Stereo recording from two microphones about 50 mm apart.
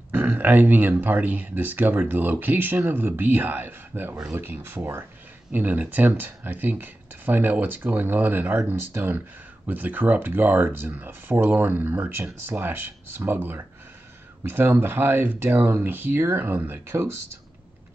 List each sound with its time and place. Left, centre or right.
0.1 s speech: right
5.5 s speech: right
9.7 s speech: right